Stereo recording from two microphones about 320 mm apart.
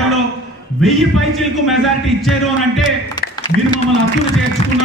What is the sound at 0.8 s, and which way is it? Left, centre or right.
A man's voice, centre.